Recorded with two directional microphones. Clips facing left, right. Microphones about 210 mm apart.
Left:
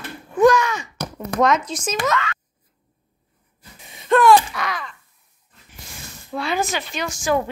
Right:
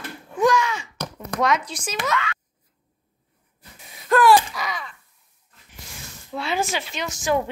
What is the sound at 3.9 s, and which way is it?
Speech, centre (ahead or behind).